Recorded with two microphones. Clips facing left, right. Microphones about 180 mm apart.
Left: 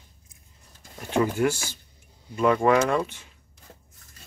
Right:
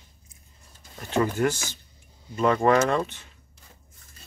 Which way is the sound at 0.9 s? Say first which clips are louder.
Left 1 dB; 10° left (ahead or behind).